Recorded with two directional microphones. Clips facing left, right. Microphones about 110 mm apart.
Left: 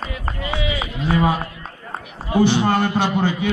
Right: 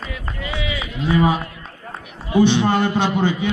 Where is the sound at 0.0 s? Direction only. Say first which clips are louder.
Left 2 dB; 40° left (ahead or behind).